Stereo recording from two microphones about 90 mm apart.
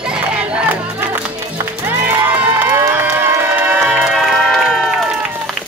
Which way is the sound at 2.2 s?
20° right (ahead or behind).